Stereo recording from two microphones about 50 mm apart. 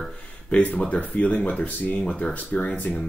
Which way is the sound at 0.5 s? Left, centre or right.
Left.